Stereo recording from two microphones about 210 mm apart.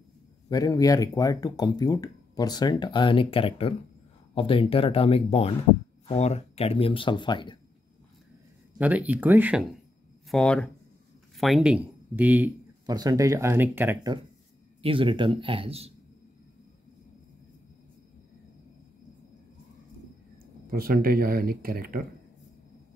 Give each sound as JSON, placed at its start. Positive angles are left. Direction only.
{"t": 0.5, "sound": "speech", "side_deg": 15}
{"t": 8.7, "sound": "speech", "side_deg": -5}
{"t": 10.3, "sound": "speech", "side_deg": 5}
{"t": 12.8, "sound": "speech", "side_deg": -20}
{"t": 14.8, "sound": "a man's voice", "side_deg": -25}
{"t": 20.7, "sound": "speech", "side_deg": -45}